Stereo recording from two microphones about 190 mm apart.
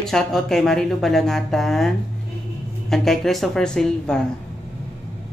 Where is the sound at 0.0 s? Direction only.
Centre (ahead or behind).